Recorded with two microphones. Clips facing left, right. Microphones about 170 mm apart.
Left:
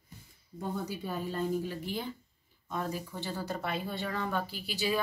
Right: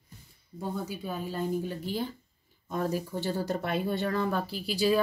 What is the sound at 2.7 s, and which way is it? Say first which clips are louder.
Speech: right 5 dB; 40° right (ahead or behind).